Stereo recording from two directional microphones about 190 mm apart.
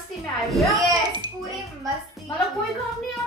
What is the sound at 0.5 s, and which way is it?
Speech, centre (ahead or behind).